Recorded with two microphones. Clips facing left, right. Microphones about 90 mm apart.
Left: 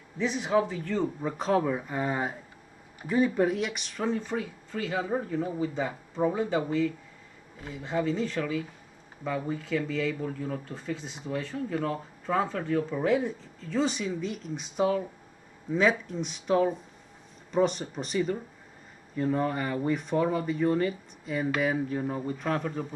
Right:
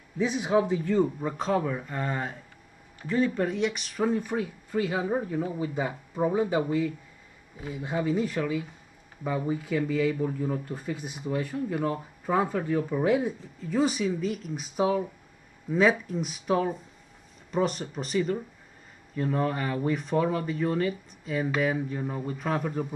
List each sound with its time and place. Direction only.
0.2 s speech: 15° right (ahead or behind)
1.0 s speech: centre (ahead or behind)